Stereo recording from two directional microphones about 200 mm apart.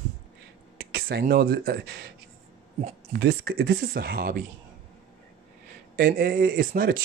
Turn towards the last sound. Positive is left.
turn(degrees=-45)  # may be behind; listen again after turning